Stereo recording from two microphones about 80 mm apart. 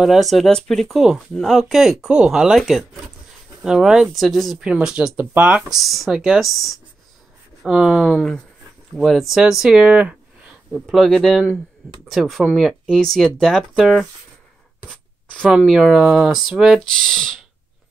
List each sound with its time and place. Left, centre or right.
0.0 s speech: centre
4.6 s speech: centre
5.8 s speech: centre
8.9 s speech: centre
10.7 s speech: centre
14.9 s writing: centre
15.5 s speech: centre